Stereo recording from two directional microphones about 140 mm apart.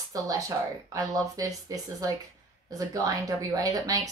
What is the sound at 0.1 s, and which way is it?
Speech, 25° right (ahead or behind).